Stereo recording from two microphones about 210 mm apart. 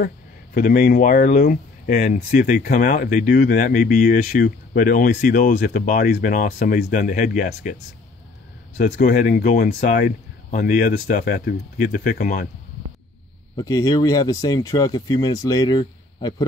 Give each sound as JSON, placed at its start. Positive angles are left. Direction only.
{"t": 0.6, "sound": "speech", "side_deg": 40}
{"t": 8.7, "sound": "speech", "side_deg": 35}
{"t": 13.6, "sound": "speech", "side_deg": 15}